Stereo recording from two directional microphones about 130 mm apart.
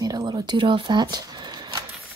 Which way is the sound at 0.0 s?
30° right (ahead or behind).